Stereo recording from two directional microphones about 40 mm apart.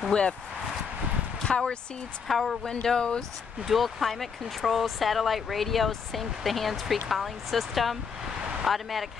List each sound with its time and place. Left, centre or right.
0.1 s speech: left
1.4 s speech: left
2.2 s speech: centre
2.6 s speech: centre
3.6 s speech: centre